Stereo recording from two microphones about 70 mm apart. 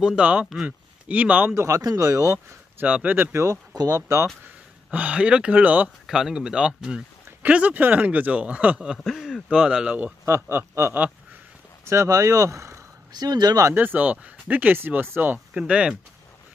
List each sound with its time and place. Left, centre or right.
0.0 s speech: centre
1.5 s speech: right
1.8 s speech: right
2.3 s speech: right
3.7 s speech: right
4.9 s speech: centre
6.0 s speech: centre
9.1 s a sound: centre
9.7 s speech: centre
10.2 s a man's voice: right
13.1 s speech: right
13.7 s speech: right
15.5 s speech: centre